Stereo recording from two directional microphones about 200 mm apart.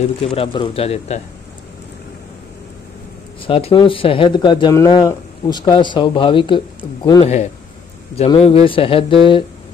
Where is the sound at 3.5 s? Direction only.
25° left (ahead or behind).